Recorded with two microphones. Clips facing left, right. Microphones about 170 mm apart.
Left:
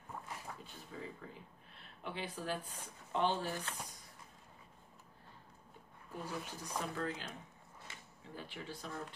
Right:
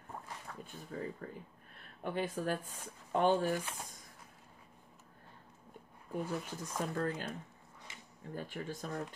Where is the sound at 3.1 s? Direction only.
50° right (ahead or behind).